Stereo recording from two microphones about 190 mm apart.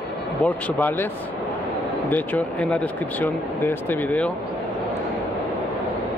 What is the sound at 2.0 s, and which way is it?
Speech, 10° left (ahead or behind).